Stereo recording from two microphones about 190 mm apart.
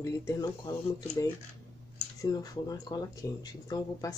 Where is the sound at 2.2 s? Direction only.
20° left (ahead or behind).